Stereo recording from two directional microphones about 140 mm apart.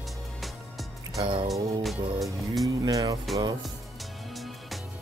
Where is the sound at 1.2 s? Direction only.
35° right (ahead or behind).